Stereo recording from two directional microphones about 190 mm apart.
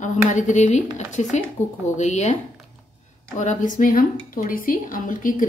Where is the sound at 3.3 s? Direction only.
40° left (ahead or behind).